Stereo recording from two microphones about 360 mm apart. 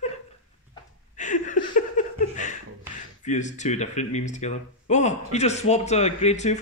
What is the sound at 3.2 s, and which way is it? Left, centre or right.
Speech, centre.